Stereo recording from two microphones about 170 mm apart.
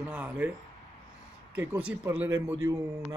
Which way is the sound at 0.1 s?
10° right (ahead or behind).